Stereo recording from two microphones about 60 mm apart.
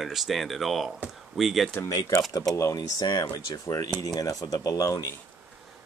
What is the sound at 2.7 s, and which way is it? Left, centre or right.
Speech, left.